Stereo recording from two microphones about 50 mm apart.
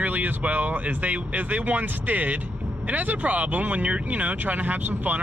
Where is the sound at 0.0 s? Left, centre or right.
Right.